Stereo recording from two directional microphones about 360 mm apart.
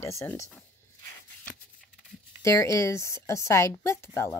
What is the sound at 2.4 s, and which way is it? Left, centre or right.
A woman's voice, centre.